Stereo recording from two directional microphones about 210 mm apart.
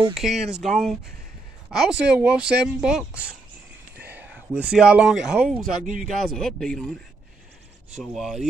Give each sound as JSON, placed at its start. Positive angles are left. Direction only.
{"t": 0.1, "sound": "speech", "side_deg": 0}
{"t": 5.6, "sound": "speech", "side_deg": -40}
{"t": 6.0, "sound": "speech", "side_deg": 0}